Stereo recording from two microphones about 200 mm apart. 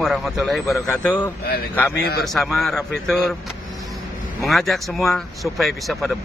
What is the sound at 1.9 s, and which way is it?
Speech, 55° left (ahead or behind).